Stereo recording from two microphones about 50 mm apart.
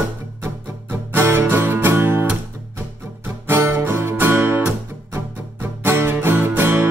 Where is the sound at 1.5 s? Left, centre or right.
Right.